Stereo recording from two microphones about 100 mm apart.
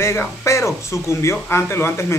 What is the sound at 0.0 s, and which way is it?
Speech, 25° left (ahead or behind).